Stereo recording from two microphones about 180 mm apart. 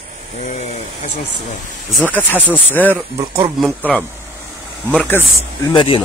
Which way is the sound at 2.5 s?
10° left (ahead or behind).